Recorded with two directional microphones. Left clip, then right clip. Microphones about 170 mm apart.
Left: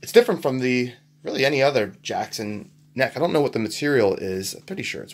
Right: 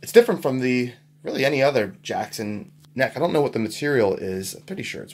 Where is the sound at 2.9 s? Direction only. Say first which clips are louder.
Even; 15° left (ahead or behind).